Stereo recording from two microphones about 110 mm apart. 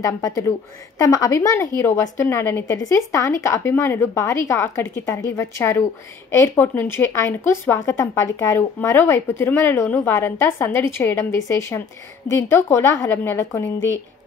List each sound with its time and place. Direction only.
0.0 s a woman's voice: 30° left (ahead or behind)